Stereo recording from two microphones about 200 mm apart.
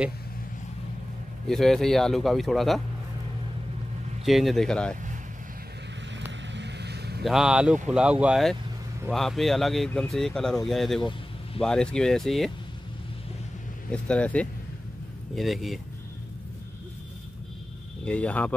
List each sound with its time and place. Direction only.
1.5 s speech: centre (ahead or behind)
4.2 s speech: centre (ahead or behind)
6.5 s vehicle: 60° right (ahead or behind)
7.2 s speech: 5° right (ahead or behind)
13.9 s speech: 5° left (ahead or behind)
18.0 s speech: 5° left (ahead or behind)